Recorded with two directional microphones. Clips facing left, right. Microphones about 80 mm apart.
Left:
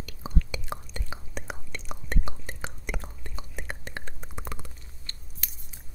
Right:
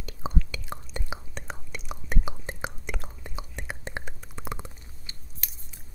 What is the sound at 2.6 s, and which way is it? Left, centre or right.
Whispering, centre.